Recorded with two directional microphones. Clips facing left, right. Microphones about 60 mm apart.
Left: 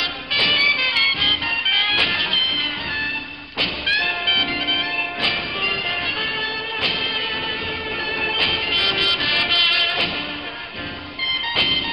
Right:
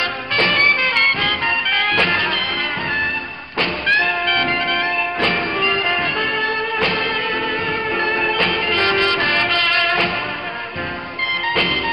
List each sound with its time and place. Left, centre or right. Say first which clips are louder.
0.0 s music: right 4 dB; right
3.5 s music: right 5 dB; right
11.4 s music: right 4 dB; right